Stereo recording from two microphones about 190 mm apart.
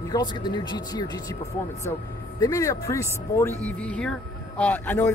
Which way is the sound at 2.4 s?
15° left (ahead or behind).